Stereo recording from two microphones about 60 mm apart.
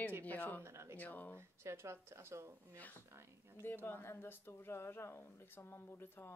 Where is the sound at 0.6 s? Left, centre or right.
Right.